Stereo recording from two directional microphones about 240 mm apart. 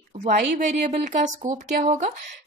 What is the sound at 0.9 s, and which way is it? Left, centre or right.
A woman's voice, right.